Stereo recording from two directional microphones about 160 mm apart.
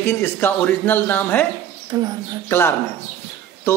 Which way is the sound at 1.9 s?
20° right (ahead or behind).